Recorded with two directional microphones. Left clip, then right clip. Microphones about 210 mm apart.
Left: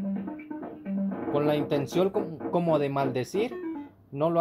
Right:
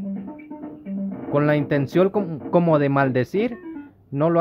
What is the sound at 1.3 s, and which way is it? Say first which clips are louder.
Speech: right 6 dB; 35° right (ahead or behind).